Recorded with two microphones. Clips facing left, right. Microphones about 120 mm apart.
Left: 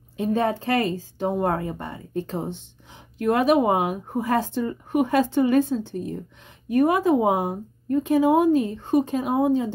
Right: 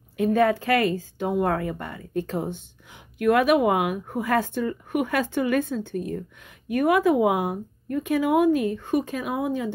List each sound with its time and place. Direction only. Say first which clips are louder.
0.2 s speech: right 2 dB; 25° left (ahead or behind)